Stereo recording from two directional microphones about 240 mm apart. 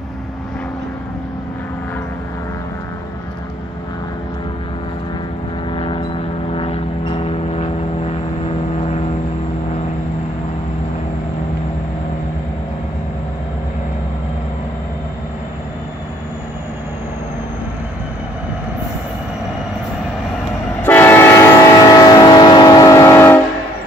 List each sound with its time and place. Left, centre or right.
5.8 s vehicle: left
20.8 s train: centre